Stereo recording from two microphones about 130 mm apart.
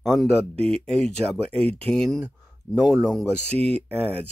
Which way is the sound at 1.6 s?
50° right (ahead or behind).